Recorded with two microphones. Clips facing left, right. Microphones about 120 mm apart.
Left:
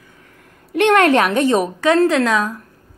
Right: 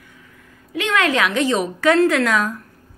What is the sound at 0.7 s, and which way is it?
A woman's voice, 60° left (ahead or behind).